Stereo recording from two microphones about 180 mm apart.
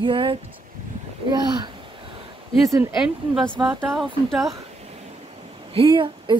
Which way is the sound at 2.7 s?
15° right (ahead or behind).